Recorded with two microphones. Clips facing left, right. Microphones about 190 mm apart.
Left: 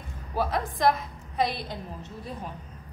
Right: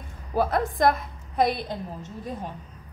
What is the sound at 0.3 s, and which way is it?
Speech, 50° right (ahead or behind).